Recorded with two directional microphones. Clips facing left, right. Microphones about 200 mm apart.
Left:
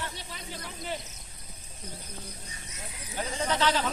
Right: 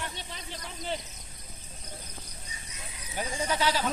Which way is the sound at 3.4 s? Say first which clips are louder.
Left 1 dB; 10° right (ahead or behind).